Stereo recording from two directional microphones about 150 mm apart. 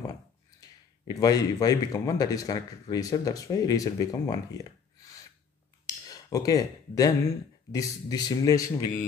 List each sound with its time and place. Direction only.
0.6 s speech: 25° left (ahead or behind)
5.9 s a sound: 25° left (ahead or behind)
7.7 s speech: 25° left (ahead or behind)